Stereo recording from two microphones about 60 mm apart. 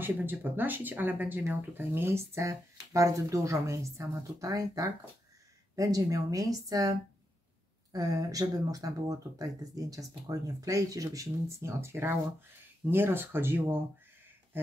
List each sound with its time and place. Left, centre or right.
0.0 s speech: right